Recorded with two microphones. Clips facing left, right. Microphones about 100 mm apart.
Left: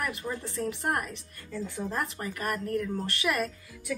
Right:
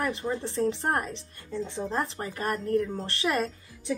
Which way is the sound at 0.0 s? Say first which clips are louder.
Right 4 dB; 25° right (ahead or behind).